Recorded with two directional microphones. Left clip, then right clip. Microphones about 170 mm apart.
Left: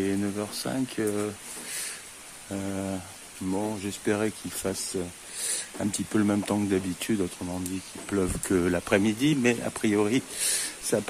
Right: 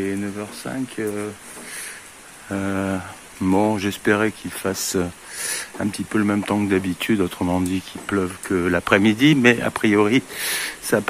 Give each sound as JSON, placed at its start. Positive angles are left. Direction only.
{"t": 0.0, "sound": "speech", "side_deg": 30}
{"t": 2.5, "sound": "speech", "side_deg": 0}
{"t": 3.4, "sound": "speech", "side_deg": -20}
{"t": 4.0, "sound": "speech", "side_deg": 10}
{"t": 4.9, "sound": "speech", "side_deg": -5}
{"t": 5.9, "sound": "speech", "side_deg": 20}
{"t": 7.3, "sound": "speech", "side_deg": -15}
{"t": 8.1, "sound": "speech", "side_deg": 10}
{"t": 8.5, "sound": "speech", "side_deg": 20}
{"t": 8.7, "sound": "speech", "side_deg": 5}